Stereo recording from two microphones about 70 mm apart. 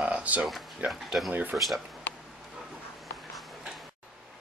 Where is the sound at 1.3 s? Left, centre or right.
Right.